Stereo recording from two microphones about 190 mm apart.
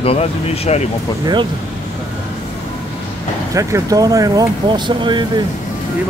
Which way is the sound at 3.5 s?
15° right (ahead or behind).